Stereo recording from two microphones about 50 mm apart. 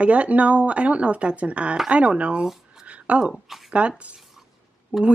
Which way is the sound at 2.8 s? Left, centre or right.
Right.